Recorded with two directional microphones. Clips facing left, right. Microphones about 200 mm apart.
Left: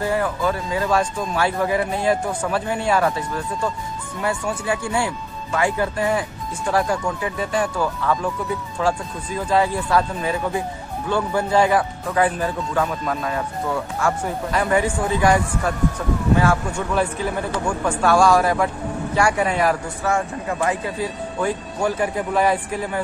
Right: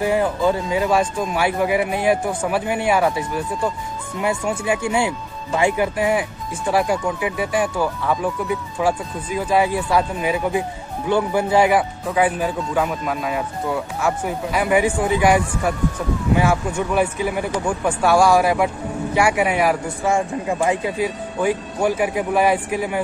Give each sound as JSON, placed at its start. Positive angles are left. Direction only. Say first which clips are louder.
{"t": 0.0, "sound": "speech", "louder": "right 3 dB", "side_deg": -20}